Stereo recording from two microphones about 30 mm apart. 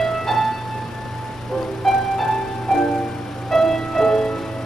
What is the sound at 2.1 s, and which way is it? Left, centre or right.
Music, centre.